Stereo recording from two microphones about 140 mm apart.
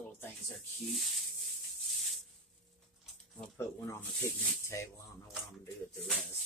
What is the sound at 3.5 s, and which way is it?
Speech, 20° left (ahead or behind).